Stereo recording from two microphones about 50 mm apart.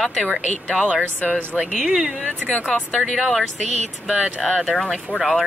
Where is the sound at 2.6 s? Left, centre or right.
Centre.